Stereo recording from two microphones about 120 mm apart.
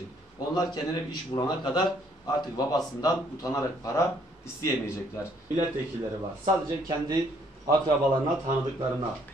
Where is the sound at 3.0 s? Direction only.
30° left (ahead or behind).